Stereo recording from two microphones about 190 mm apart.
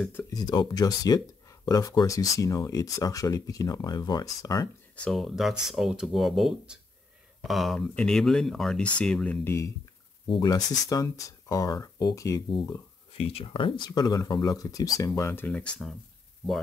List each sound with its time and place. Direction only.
0.0 s speech: 10° left (ahead or behind)
0.3 s speech: 20° left (ahead or behind)
5.0 s speech: centre (ahead or behind); by 12.4 s 15° left (ahead or behind)
13.2 s speech: 30° left (ahead or behind); by 16.0 s 5° left (ahead or behind)